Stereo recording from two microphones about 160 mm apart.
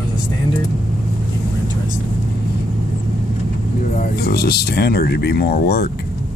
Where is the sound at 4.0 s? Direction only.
75° left (ahead or behind).